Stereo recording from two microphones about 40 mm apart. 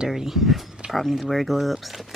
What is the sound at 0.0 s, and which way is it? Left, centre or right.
Speech, centre.